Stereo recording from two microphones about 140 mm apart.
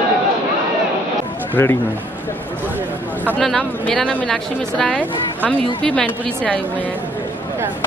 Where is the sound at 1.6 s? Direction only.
20° left (ahead or behind).